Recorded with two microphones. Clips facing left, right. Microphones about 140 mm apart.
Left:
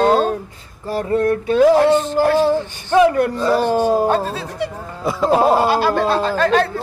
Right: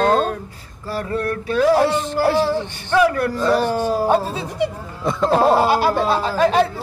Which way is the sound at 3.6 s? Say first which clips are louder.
Left 4 dB; 15° left (ahead or behind).